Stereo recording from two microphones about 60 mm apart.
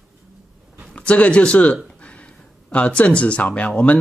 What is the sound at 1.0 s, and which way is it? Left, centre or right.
Speech, left.